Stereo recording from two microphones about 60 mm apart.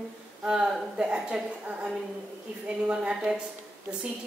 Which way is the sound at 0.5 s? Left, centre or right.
Centre.